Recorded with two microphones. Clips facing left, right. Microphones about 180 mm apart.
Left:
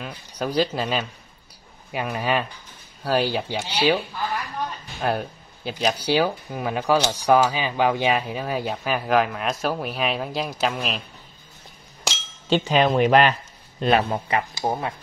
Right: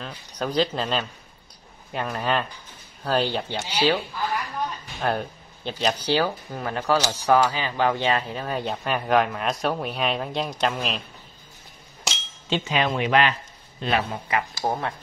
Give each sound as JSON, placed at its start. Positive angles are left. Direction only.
{"t": 0.0, "sound": "speech", "side_deg": 10}
{"t": 5.0, "sound": "speech", "side_deg": 5}
{"t": 12.4, "sound": "a man's voice", "side_deg": 40}
{"t": 14.6, "sound": "speech", "side_deg": 10}